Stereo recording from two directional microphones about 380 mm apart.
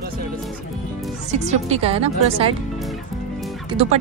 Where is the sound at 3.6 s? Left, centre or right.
Centre.